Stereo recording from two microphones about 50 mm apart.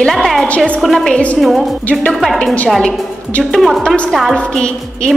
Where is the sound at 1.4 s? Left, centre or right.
Centre.